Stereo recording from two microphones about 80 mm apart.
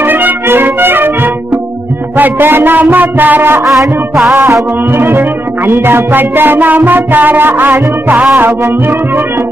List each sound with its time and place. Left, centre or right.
0.0 s music: right
4.3 s music: right
4.9 s music: right